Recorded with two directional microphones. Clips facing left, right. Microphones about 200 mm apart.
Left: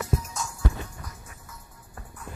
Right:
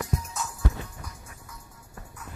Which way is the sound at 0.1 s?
Centre (ahead or behind).